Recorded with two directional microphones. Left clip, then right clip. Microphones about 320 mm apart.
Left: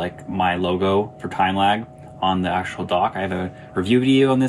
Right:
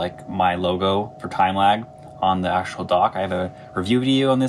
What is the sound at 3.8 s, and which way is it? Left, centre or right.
Speech, right.